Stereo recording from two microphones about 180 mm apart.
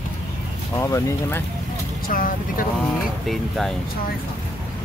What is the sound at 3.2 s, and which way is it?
Speech, centre (ahead or behind).